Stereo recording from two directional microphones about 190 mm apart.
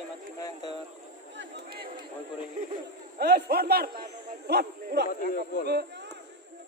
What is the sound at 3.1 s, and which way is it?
Speech, 60° right (ahead or behind).